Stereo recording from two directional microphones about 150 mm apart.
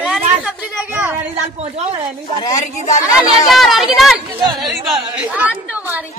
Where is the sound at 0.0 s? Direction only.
5° right (ahead or behind).